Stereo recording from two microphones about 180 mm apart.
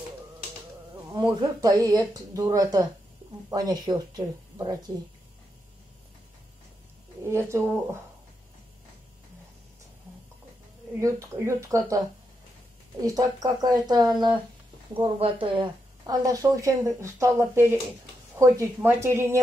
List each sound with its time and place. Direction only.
1.0 s a woman's voice: 20° right (ahead or behind)
7.2 s speech: 15° right (ahead or behind)
11.0 s speech: 15° right (ahead or behind)
13.0 s a woman's voice: 20° right (ahead or behind)